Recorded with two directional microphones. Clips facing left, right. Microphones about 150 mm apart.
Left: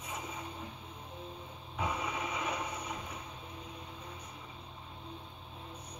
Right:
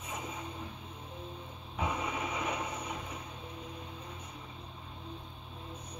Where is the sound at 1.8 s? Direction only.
5° right (ahead or behind).